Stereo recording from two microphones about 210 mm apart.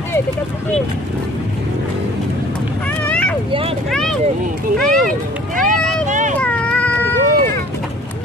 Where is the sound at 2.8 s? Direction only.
5° left (ahead or behind).